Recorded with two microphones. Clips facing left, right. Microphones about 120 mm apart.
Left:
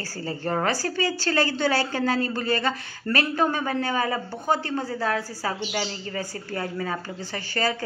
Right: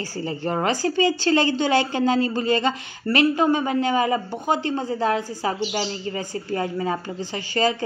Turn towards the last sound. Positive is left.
turn(degrees=-20)  # may be behind; listen again after turning